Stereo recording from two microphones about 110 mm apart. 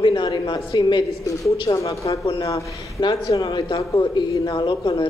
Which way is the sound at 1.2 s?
30° left (ahead or behind).